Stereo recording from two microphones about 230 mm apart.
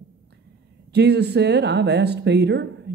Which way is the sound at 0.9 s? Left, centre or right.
Right.